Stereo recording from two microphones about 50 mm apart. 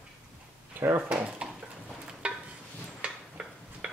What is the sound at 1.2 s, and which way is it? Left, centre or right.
Speech, right.